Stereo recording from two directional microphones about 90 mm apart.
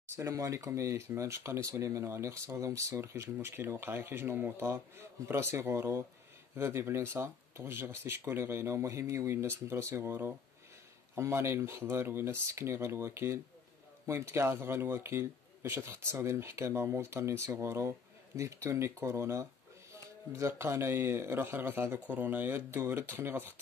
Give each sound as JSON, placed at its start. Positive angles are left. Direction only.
{"t": 0.1, "sound": "speech", "side_deg": -35}